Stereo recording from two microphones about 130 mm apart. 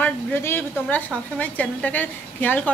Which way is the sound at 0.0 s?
15° left (ahead or behind).